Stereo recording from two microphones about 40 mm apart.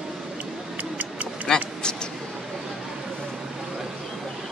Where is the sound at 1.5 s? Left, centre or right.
Left.